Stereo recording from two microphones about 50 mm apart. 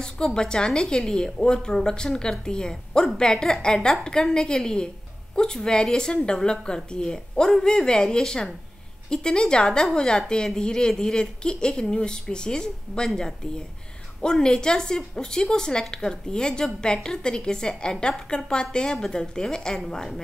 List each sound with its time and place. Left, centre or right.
0.0 s a woman's voice: centre